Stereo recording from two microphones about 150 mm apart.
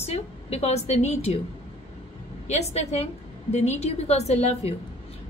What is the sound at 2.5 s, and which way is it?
A woman's voice, 45° left (ahead or behind).